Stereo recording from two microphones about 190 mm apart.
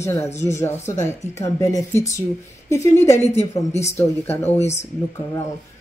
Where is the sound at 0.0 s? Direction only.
15° left (ahead or behind).